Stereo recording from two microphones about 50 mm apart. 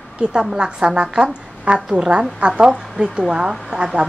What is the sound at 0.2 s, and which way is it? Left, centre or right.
A woman's voice, centre.